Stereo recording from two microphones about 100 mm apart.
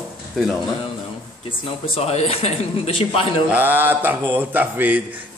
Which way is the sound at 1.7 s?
90° left.